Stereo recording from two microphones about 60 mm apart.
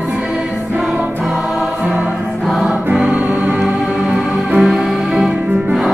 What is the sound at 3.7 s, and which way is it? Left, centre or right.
Music, centre.